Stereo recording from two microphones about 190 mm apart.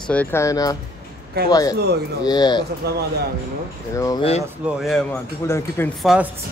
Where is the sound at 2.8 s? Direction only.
60° right (ahead or behind).